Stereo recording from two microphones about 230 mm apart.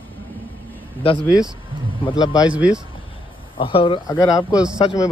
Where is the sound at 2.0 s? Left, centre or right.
Centre.